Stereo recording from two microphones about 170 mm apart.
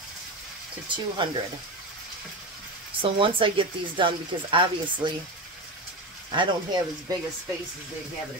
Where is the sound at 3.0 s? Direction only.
30° right (ahead or behind).